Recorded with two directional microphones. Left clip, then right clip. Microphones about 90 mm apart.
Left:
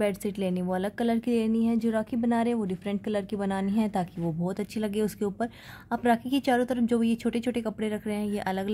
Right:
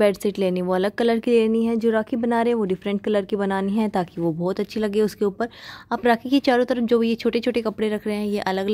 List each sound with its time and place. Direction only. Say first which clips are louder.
0.0 s speech: right 9 dB; 30° right (ahead or behind)